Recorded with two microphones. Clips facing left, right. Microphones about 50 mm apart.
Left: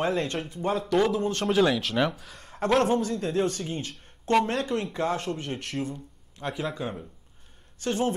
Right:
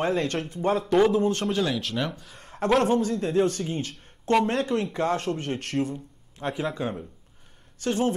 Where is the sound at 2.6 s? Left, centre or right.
Centre.